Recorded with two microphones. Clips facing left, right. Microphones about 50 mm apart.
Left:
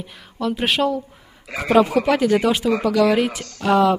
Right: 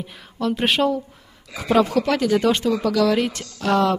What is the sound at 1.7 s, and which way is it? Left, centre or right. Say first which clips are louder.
Speech: left 2 dB; centre.